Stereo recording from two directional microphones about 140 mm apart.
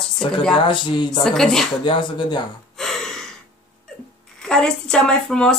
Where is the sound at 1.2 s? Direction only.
5° left (ahead or behind).